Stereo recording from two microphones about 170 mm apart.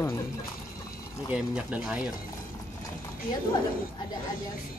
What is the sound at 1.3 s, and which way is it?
Speech, 5° right (ahead or behind).